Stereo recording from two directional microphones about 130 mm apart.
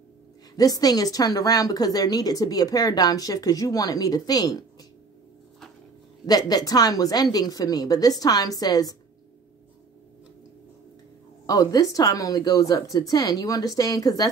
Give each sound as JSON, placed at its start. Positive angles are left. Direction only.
{"t": 0.6, "sound": "a woman's voice", "side_deg": 30}
{"t": 6.2, "sound": "a woman's voice", "side_deg": 30}
{"t": 11.4, "sound": "a woman's voice", "side_deg": 30}